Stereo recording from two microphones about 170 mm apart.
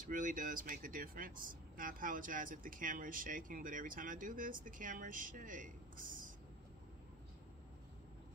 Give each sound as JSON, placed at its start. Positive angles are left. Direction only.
{"t": 0.0, "sound": "speech", "side_deg": -50}